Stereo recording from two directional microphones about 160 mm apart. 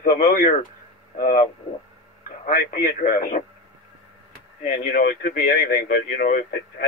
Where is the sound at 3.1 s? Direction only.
55° left (ahead or behind).